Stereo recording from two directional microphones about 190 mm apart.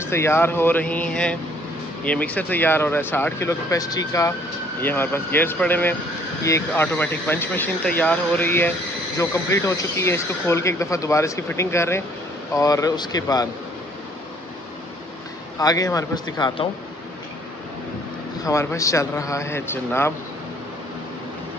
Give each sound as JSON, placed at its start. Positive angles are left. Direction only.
{"t": 0.0, "sound": "a man's voice", "side_deg": 15}
{"t": 15.6, "sound": "a man's voice", "side_deg": 20}
{"t": 18.4, "sound": "speech", "side_deg": 15}